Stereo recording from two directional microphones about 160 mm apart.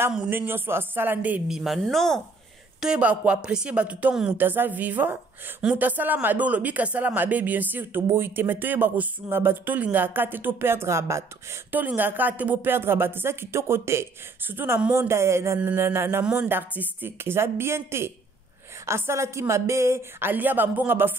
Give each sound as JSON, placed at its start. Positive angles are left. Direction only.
{"t": 0.1, "sound": "speech", "side_deg": -10}